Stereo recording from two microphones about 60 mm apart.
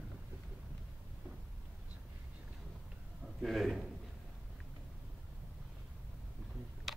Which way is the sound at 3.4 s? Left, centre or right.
Centre.